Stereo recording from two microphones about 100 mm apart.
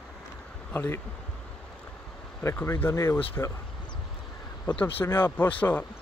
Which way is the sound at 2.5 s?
25° left (ahead or behind).